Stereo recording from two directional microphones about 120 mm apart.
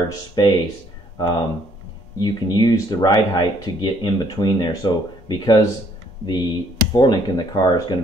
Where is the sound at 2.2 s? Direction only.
35° left (ahead or behind).